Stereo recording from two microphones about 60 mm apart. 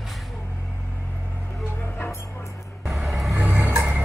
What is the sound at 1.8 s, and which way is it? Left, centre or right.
Music, left.